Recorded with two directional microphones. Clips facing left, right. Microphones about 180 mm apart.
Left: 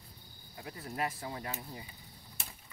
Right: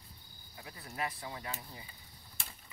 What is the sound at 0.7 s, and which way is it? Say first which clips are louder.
Speech: left 3 dB; 40° left (ahead or behind).